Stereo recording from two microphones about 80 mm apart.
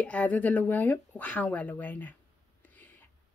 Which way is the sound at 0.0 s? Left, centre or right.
Centre.